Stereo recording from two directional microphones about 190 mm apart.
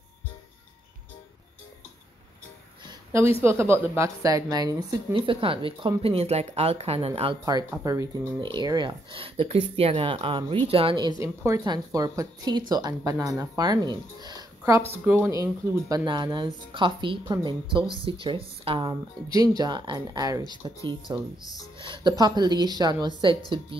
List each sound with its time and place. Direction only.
2.8 s a sound: 15° right (ahead or behind)
3.4 s speech: 15° right (ahead or behind); by 7.3 s 30° right (ahead or behind)
7.4 s speech: 20° right (ahead or behind)